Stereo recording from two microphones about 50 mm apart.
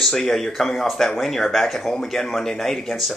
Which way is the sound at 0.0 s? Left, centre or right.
Centre.